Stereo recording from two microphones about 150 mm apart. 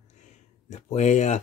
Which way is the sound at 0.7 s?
50° left (ahead or behind).